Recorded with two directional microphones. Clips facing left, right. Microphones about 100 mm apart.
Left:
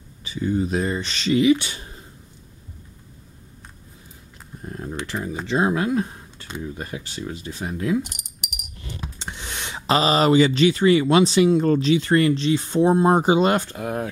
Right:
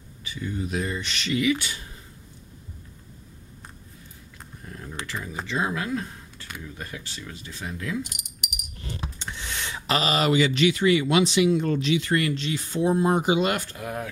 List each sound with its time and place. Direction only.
0.2 s speech: 30° left (ahead or behind)
4.6 s typing: 30° left (ahead or behind)
5.0 s speech: 35° left (ahead or behind)
9.2 s speech: 20° left (ahead or behind)